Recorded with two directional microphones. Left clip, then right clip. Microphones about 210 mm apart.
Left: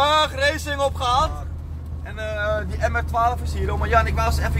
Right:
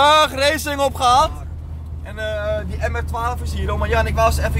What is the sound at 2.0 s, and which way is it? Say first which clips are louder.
Speech: right 2 dB; 10° right (ahead or behind).